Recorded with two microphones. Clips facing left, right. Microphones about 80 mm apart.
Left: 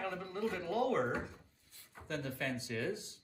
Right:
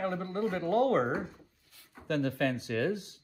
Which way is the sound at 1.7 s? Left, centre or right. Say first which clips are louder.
Right 2 dB; right.